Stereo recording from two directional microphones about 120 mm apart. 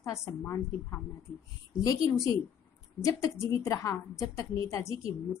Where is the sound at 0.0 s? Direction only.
25° left (ahead or behind).